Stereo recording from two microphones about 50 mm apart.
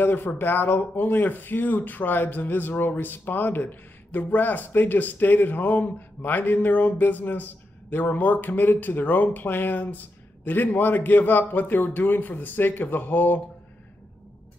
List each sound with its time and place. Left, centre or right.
0.0 s speech: left